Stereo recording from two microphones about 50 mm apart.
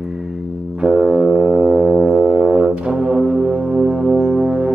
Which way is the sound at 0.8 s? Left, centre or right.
Centre.